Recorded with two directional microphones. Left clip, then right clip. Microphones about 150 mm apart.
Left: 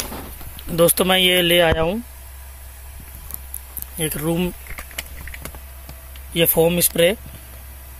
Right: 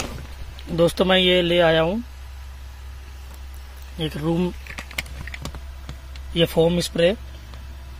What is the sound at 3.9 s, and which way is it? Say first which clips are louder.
Speech: left 2 dB; centre (ahead or behind).